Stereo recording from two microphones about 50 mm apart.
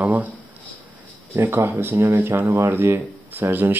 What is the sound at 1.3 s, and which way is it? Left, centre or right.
A man's voice, right.